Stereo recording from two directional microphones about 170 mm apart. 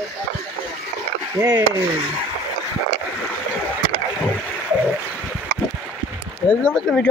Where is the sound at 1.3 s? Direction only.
15° right (ahead or behind).